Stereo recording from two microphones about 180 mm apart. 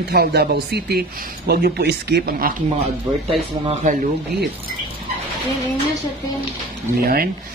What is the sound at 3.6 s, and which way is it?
Speech, 40° right (ahead or behind).